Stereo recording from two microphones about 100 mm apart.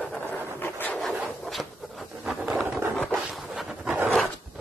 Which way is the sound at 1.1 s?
5° right (ahead or behind).